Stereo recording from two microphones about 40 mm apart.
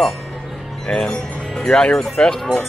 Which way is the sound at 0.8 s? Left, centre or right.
Centre.